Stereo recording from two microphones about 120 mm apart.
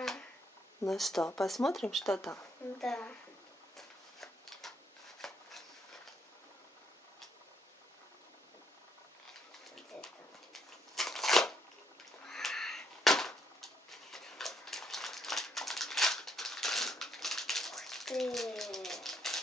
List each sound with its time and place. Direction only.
0.8 s speech: centre (ahead or behind)
2.0 s a woman's voice: 25° left (ahead or behind)
2.8 s a woman's voice: 5° left (ahead or behind)
3.7 s a sound: centre (ahead or behind)
9.8 s shuffling cards: centre (ahead or behind)
12.3 s a sound: 5° left (ahead or behind)